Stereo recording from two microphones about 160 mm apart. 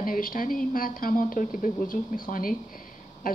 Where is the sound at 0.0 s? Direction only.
60° left (ahead or behind).